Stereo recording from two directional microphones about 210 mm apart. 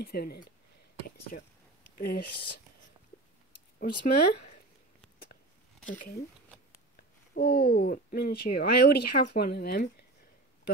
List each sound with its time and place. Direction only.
0.0 s speech: 45° left (ahead or behind)
2.0 s speech: 45° left (ahead or behind)
3.8 s speech: 45° left (ahead or behind)
5.9 s speech: 40° left (ahead or behind)
7.3 s speech: 45° left (ahead or behind)